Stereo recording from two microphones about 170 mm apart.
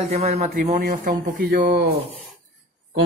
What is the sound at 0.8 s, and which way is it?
Speech, 60° right (ahead or behind).